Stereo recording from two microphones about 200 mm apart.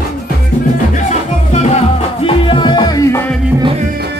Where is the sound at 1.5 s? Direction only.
35° left (ahead or behind); by 3.3 s 10° left (ahead or behind).